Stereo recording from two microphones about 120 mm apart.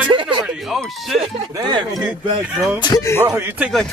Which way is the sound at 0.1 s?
45° right (ahead or behind).